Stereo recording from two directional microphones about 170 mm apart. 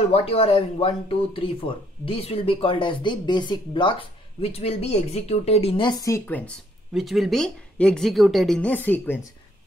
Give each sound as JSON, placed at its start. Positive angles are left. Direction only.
{"t": 0.1, "sound": "speech", "side_deg": 35}
{"t": 6.0, "sound": "speech", "side_deg": 15}
{"t": 6.9, "sound": "speech", "side_deg": 0}